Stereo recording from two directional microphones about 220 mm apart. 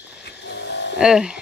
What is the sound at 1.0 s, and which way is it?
Speech, 5° right (ahead or behind).